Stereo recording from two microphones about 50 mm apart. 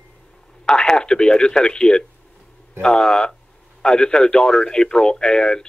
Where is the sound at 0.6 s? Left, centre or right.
Centre.